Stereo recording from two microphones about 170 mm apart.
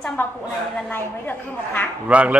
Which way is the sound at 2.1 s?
10° right (ahead or behind).